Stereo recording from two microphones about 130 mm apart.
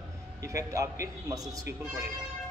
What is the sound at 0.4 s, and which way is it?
A man's voice, 25° right (ahead or behind).